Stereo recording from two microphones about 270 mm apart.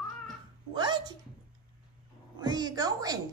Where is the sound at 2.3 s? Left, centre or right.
Centre.